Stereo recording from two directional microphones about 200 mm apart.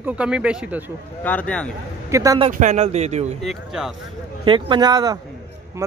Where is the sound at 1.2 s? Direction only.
5° left (ahead or behind).